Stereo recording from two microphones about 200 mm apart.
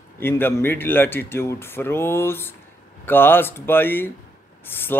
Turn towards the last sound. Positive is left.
turn(degrees=10)  # may be behind; listen again after turning